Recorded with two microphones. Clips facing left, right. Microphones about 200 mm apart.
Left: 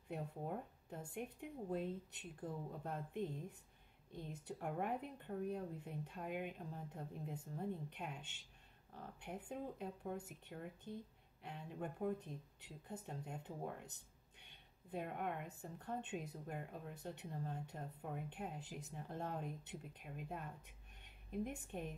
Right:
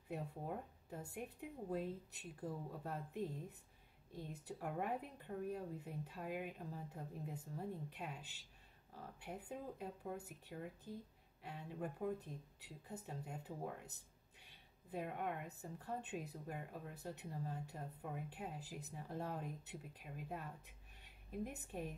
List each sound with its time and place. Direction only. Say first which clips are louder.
0.8 s a woman's voice: even; 5° right (ahead or behind)